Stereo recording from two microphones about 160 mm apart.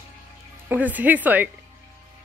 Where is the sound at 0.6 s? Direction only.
10° right (ahead or behind).